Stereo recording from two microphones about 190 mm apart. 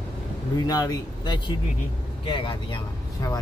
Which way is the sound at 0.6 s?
20° left (ahead or behind).